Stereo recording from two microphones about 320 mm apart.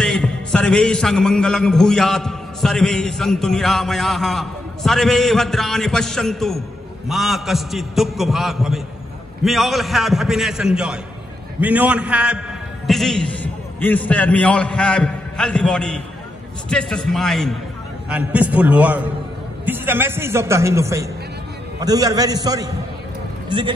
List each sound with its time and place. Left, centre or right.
0.0 s a man's voice: centre